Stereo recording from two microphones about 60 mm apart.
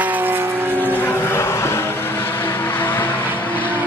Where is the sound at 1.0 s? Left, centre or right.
Left.